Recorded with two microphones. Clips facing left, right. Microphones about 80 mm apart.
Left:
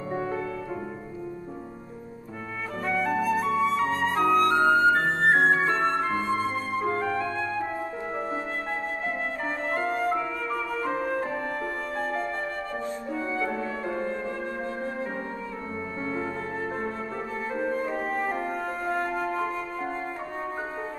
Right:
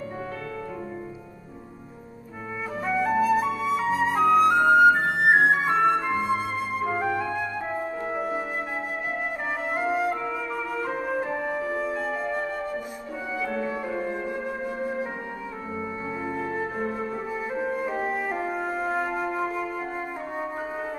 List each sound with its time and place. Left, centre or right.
2.8 s flute: centre
4.8 s flute: centre
8.1 s music: centre
9.7 s music: centre
13.7 s music: centre
16.1 s music: centre